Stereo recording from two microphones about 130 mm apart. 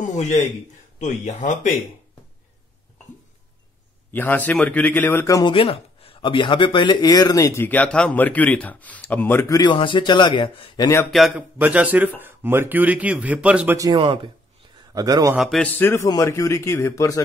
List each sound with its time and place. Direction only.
0.0 s speech: 65° left (ahead or behind)
4.1 s speech: 15° left (ahead or behind)
5.4 s speech: 45° left (ahead or behind); by 9.7 s 25° left (ahead or behind)
9.7 s a man's voice: 40° left (ahead or behind)
11.1 s a man's voice: centre (ahead or behind)
11.3 s speech: 10° right (ahead or behind)
13.9 s a man's voice: 40° right (ahead or behind)
15.0 s a man's voice: 30° right (ahead or behind)
15.3 s a man's voice: centre (ahead or behind)
15.6 s speech: 20° left (ahead or behind)